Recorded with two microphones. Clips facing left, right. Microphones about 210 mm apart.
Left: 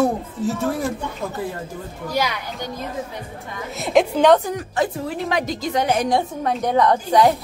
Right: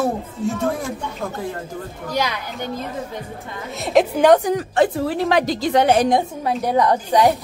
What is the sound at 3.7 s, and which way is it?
Speech, centre (ahead or behind).